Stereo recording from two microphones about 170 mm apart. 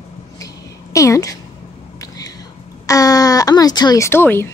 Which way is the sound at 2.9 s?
20° left (ahead or behind).